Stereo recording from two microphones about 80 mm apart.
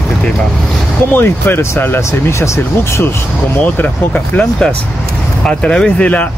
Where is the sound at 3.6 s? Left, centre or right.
Centre.